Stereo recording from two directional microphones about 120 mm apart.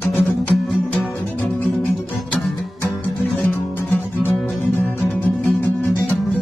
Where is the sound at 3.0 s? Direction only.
15° left (ahead or behind).